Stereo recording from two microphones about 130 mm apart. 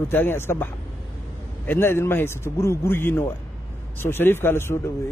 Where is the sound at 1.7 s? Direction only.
20° left (ahead or behind).